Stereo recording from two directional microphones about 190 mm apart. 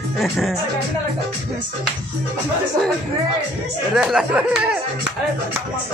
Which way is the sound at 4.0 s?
5° right (ahead or behind).